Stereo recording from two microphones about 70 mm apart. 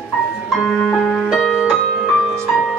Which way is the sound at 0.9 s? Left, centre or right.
Centre.